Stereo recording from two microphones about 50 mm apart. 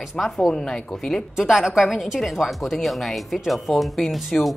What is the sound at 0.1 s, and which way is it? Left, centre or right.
Speech, centre.